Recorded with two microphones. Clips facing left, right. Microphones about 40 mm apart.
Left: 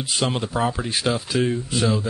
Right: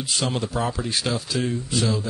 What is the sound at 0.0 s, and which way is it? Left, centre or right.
Speech, centre.